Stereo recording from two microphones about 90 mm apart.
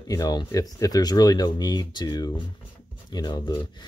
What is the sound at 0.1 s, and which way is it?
Speech, 45° left (ahead or behind).